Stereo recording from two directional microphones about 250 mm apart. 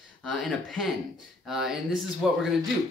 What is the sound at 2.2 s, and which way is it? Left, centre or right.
Speech, centre.